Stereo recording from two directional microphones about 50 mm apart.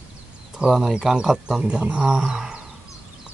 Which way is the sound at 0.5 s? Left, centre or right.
Centre.